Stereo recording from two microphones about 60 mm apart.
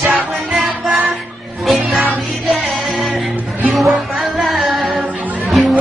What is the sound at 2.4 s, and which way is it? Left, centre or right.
Music, centre.